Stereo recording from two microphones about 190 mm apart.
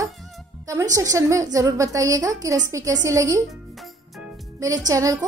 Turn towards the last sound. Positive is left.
turn(degrees=-15)  # may be behind; listen again after turning